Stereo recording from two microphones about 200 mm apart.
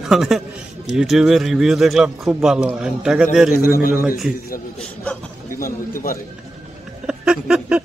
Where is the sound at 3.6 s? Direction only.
50° left (ahead or behind).